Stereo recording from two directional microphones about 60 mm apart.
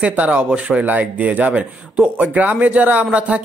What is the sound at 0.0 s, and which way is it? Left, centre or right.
Speech, right.